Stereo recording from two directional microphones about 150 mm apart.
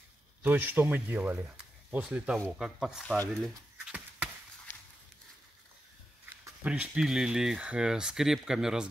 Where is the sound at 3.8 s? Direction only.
10° right (ahead or behind).